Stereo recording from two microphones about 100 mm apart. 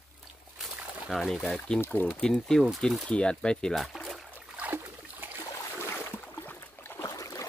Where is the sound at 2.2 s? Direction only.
5° left (ahead or behind).